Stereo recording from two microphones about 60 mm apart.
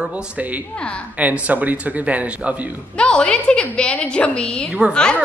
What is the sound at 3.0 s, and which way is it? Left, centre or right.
A woman's voice, centre.